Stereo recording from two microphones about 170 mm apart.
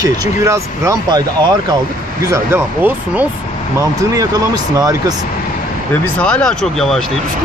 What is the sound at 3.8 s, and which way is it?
Speech, 20° right (ahead or behind).